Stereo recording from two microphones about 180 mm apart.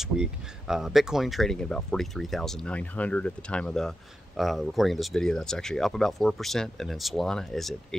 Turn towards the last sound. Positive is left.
turn(degrees=0)  # may be behind; listen again after turning